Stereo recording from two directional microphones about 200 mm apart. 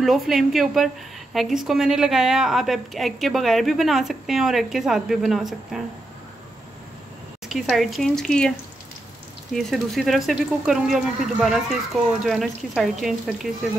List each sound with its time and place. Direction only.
0.0 s a woman's voice: centre (ahead or behind)
7.4 s a woman's voice: centre (ahead or behind)